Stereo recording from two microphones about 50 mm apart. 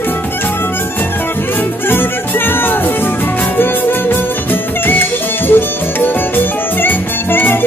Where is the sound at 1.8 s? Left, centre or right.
Left.